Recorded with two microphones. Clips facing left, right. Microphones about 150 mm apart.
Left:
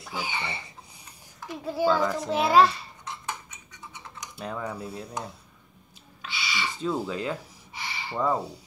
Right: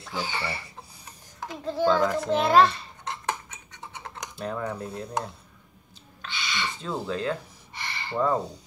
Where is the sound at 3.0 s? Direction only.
65° right (ahead or behind).